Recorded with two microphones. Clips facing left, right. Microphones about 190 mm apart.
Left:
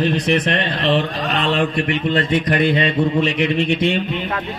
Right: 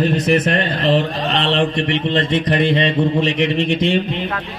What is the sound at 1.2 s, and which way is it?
Speech, 30° right (ahead or behind).